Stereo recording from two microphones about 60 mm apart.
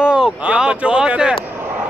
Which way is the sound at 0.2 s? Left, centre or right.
Centre.